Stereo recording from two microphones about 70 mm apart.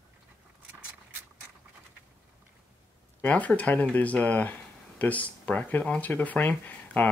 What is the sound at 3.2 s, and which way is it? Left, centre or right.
Speech, centre.